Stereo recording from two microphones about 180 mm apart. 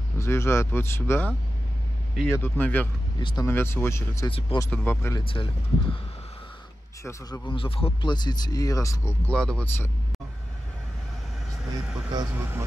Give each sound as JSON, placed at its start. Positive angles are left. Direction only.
{"t": 0.2, "sound": "speech", "side_deg": 15}
{"t": 3.2, "sound": "speech", "side_deg": 25}
{"t": 3.4, "sound": "speech", "side_deg": 15}
{"t": 4.3, "sound": "speech", "side_deg": 30}
{"t": 4.6, "sound": "speech", "side_deg": 10}
{"t": 5.2, "sound": "speech", "side_deg": 30}
{"t": 7.1, "sound": "speech", "side_deg": 15}
{"t": 7.4, "sound": "speech", "side_deg": 30}
{"t": 12.1, "sound": "speech", "side_deg": -20}